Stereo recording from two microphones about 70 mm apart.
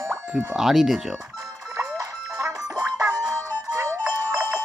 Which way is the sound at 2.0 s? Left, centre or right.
Right.